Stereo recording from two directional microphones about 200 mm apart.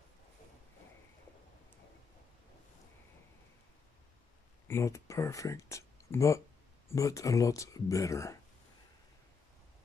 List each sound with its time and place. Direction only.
4.6 s speech: 15° left (ahead or behind)